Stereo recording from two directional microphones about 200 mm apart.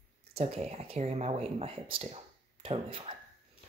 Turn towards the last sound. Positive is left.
turn(degrees=-25)  # may be behind; listen again after turning